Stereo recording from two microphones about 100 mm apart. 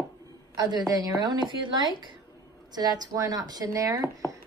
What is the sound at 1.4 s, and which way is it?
Speech, 55° right (ahead or behind).